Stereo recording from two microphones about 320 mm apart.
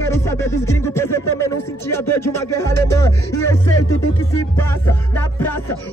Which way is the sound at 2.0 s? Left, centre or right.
Left.